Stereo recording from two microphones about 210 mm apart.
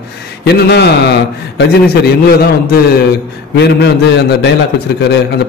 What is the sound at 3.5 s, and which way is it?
A man's voice, 50° left (ahead or behind).